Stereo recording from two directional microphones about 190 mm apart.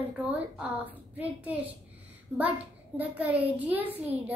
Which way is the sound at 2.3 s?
10° right (ahead or behind).